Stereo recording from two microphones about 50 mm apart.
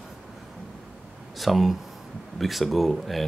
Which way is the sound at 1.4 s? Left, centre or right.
Centre.